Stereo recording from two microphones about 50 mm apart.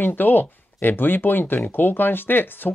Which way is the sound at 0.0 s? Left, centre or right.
Left.